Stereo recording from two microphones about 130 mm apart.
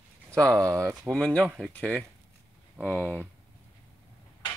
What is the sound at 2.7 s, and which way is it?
Speech, 10° right (ahead or behind).